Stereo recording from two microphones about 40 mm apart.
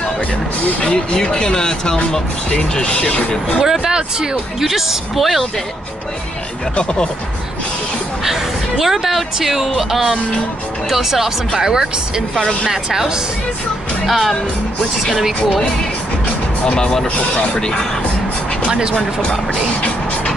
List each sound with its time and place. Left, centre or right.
0.8 s speech: left
3.8 s speech: centre
4.6 s speech: centre
8.3 s speech: centre
14.0 s speech: centre
16.7 s speech: left
18.7 s speech: right